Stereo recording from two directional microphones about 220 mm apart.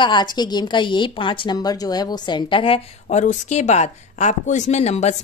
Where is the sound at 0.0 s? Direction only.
20° left (ahead or behind).